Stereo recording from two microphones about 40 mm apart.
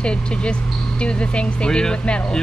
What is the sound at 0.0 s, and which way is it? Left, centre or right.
Speech, left.